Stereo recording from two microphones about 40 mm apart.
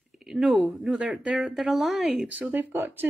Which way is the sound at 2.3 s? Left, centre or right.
Right.